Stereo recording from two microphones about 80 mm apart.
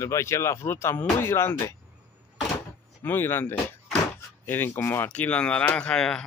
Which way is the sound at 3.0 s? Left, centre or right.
Left.